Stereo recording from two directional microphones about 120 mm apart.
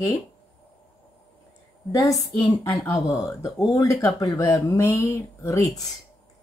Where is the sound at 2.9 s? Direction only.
30° left (ahead or behind).